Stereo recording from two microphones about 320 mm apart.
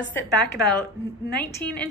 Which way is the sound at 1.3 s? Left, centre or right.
Centre.